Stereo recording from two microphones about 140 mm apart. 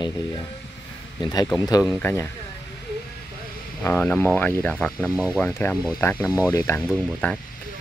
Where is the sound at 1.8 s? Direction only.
15° left (ahead or behind).